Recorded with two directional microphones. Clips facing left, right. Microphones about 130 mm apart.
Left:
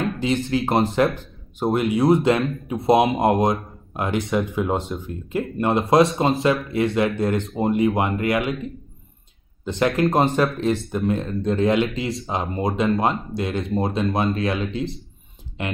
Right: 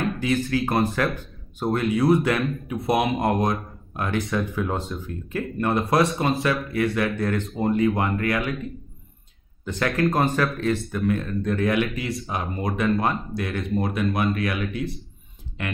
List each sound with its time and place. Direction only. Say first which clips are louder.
0.2 s a man's voice: left 2 dB; 25° left (ahead or behind)
9.7 s a man's voice: left 3 dB; 25° left (ahead or behind)